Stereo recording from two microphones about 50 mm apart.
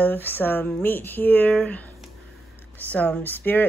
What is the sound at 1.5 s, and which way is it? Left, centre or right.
Speech, left.